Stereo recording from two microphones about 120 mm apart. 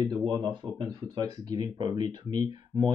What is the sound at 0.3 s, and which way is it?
Speech, 35° right (ahead or behind).